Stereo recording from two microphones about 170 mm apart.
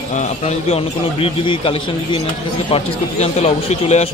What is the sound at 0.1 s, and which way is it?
A man's voice, 40° left (ahead or behind).